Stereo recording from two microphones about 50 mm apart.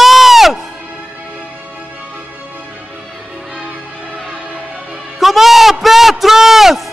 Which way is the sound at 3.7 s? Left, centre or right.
Left.